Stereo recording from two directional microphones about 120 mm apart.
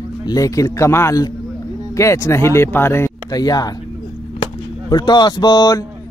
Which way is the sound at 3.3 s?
35° left (ahead or behind).